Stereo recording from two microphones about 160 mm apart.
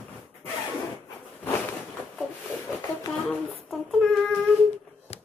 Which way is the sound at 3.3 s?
Centre (ahead or behind).